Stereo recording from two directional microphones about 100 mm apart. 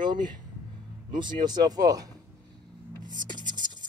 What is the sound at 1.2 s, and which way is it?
Speech, 50° right (ahead or behind).